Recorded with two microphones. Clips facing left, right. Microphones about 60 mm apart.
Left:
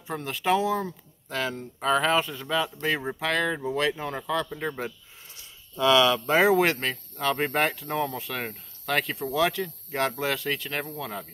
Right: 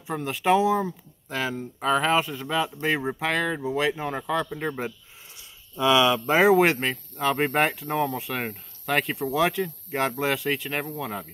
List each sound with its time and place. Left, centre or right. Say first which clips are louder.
0.0 s speech: right 3 dB; centre